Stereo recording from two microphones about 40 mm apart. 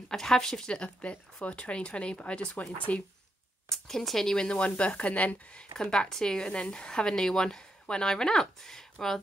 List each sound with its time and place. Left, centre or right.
0.1 s a woman's voice: centre
0.7 s speech: left
3.7 s a woman's voice: centre
4.6 s speech: left
5.8 s a woman's voice: centre